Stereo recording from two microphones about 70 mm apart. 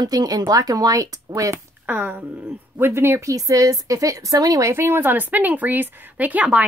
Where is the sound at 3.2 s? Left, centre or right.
Right.